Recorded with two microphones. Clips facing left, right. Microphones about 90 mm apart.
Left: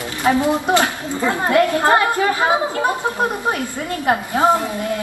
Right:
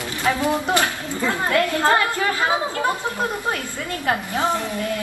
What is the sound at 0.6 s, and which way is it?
A woman's voice, 20° left (ahead or behind).